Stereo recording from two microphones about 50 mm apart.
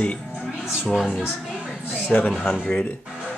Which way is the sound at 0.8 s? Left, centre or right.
Centre.